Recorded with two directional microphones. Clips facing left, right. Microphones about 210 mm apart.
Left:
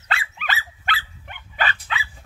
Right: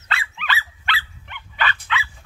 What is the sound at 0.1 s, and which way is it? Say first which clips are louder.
Dog: even; 45° left (ahead or behind).